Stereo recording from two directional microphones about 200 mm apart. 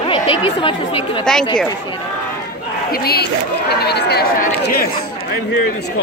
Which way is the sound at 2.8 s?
50° left (ahead or behind).